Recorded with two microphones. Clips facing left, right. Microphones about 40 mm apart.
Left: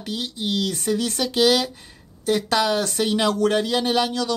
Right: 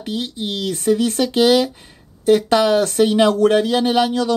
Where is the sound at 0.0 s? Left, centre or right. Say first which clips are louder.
Right 3 dB; right.